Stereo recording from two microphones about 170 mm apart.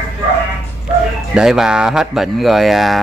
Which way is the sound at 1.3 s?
5° right (ahead or behind).